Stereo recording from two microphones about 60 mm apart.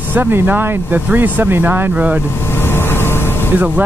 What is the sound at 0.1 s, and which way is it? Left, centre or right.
Speech, right.